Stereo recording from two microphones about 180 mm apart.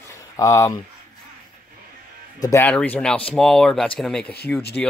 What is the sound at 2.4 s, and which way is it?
Speech, 15° left (ahead or behind).